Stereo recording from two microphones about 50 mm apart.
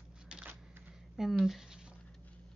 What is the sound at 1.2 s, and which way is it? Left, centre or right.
Speech, centre.